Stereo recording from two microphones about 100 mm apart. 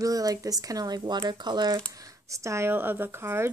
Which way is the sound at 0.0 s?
35° right (ahead or behind).